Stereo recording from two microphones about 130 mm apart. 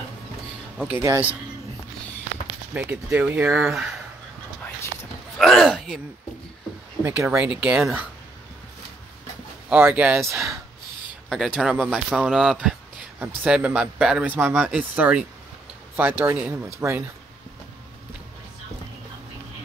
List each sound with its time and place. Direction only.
0.9 s speech: 25° right (ahead or behind)
2.7 s speech: 10° right (ahead or behind)
5.4 s speech: centre (ahead or behind)
7.1 s speech: 10° right (ahead or behind)
9.7 s speech: 10° right (ahead or behind)
10.2 s speech: 20° right (ahead or behind)
11.2 s speech: centre (ahead or behind); by 17.0 s 20° right (ahead or behind)